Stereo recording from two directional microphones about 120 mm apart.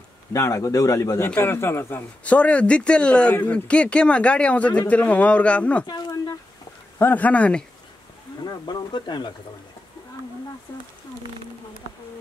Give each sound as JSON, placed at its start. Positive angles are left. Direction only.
{"t": 0.3, "sound": "speech", "side_deg": 25}
{"t": 5.9, "sound": "speech", "side_deg": 35}
{"t": 7.0, "sound": "speech", "side_deg": 15}
{"t": 8.5, "sound": "speech", "side_deg": 35}